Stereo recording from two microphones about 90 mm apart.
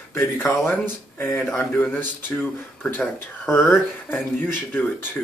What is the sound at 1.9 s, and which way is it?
Speech, 25° left (ahead or behind).